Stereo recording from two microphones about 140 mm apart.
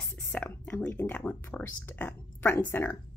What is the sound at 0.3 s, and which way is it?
Speech, 10° left (ahead or behind).